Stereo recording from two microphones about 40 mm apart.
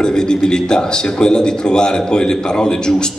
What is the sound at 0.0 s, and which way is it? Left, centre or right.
A man's voice, centre.